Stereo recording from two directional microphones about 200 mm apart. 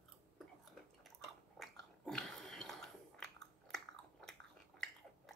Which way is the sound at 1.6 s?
Centre (ahead or behind).